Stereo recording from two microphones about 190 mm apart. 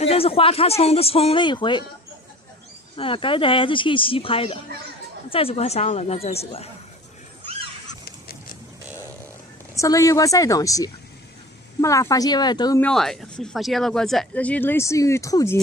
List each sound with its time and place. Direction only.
0.0 s a man's voice: 30° left (ahead or behind)
3.0 s a man's voice: 25° left (ahead or behind)
9.8 s speech: 15° left (ahead or behind)
12.8 s speech: centre (ahead or behind)